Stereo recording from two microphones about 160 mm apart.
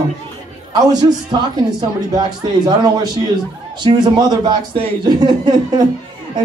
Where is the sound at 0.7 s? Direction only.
25° right (ahead or behind).